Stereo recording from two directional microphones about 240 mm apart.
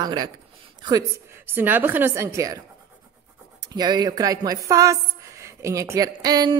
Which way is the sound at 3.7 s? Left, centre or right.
Centre.